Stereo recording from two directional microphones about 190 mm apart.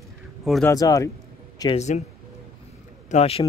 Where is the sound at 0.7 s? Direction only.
20° left (ahead or behind).